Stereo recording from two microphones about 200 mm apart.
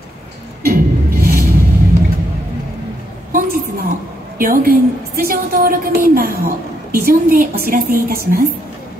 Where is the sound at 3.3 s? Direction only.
45° right (ahead or behind).